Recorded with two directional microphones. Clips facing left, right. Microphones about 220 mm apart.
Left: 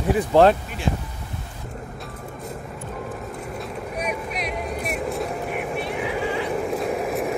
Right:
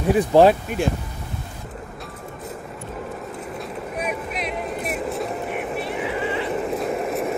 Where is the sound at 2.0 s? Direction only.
Centre (ahead or behind).